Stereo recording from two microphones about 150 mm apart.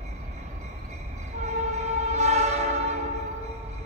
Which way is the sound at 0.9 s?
50° right (ahead or behind).